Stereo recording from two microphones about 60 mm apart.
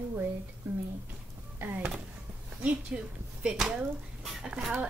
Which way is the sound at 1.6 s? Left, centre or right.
Right.